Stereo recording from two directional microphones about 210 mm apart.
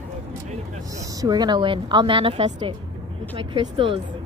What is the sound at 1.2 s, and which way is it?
A woman's voice, 20° right (ahead or behind).